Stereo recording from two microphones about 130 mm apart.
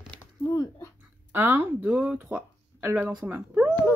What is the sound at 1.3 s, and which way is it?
Speech, 15° right (ahead or behind).